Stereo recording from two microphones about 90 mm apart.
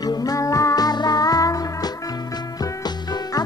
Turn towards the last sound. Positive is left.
turn(degrees=45)  # may be behind; listen again after turning